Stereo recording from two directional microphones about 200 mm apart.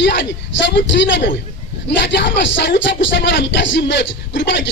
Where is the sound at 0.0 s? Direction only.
60° left (ahead or behind).